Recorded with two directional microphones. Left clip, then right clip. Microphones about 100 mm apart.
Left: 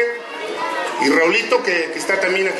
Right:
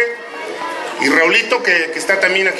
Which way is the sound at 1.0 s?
20° right (ahead or behind).